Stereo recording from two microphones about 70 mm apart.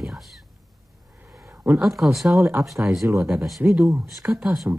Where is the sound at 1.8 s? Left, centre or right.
Centre.